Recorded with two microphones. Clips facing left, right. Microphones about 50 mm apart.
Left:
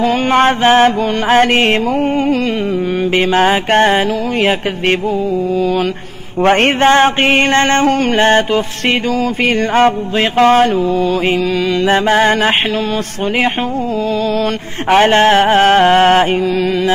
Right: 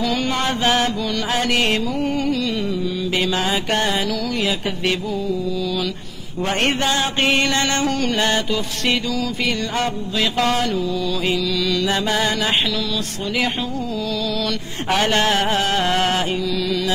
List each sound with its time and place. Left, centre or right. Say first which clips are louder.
0.0 s mantra: left 10 dB; left
3.2 s mantra: left 10 dB; left
6.4 s mantra: left 10 dB; left
9.8 s mantra: left 10 dB; left
11.8 s mantra: left 12 dB; left
14.9 s mantra: left 9 dB; left